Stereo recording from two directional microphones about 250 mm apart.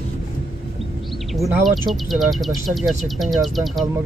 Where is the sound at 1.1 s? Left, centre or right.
Centre.